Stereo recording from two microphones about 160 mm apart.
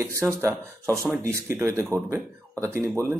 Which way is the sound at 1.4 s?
15° right (ahead or behind).